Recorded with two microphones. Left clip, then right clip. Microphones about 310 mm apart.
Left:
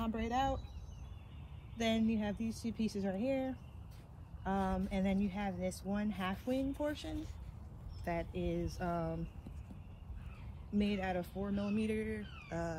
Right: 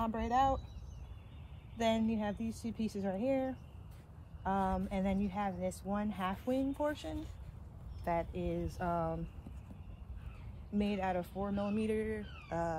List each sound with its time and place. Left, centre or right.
0.0 s speech: centre
1.8 s speech: centre
10.7 s speech: centre